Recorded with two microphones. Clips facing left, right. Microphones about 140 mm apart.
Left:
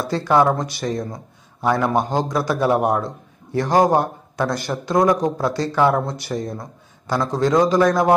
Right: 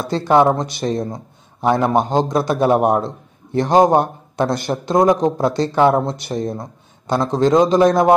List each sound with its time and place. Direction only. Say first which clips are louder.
0.0 s a man's voice: right 3 dB; 25° right (ahead or behind)